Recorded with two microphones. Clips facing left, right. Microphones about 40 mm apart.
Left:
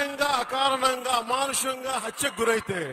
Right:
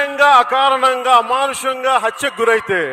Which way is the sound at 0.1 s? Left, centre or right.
Right.